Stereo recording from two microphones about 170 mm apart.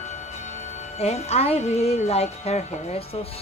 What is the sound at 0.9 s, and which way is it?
A woman's voice, 40° left (ahead or behind).